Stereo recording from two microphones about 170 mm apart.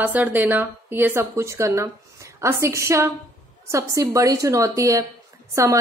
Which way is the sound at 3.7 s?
20° right (ahead or behind).